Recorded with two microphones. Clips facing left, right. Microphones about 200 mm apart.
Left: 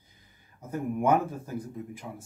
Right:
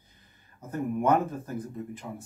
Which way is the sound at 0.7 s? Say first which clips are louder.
Even; 10° left (ahead or behind).